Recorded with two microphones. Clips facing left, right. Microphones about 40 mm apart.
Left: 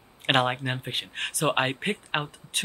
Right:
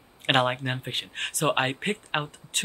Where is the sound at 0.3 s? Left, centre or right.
Centre.